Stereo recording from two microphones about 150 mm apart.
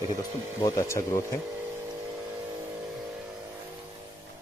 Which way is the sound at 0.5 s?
20° left (ahead or behind).